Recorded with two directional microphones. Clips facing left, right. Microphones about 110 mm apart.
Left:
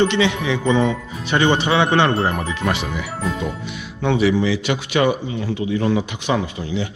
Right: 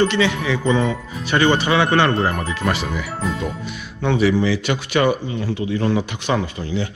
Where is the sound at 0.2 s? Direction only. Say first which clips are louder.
Even; 25° left (ahead or behind).